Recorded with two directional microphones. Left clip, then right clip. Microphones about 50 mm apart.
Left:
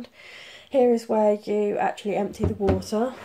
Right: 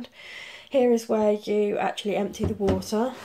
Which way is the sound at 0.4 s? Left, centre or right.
Centre.